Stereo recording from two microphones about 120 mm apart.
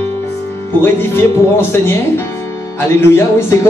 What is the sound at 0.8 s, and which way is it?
Speech, 20° left (ahead or behind).